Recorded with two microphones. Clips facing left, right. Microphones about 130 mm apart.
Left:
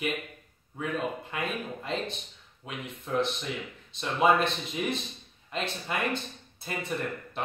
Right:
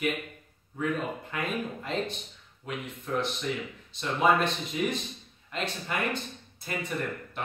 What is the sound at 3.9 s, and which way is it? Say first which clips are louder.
Speech: left 1 dB; 25° left (ahead or behind).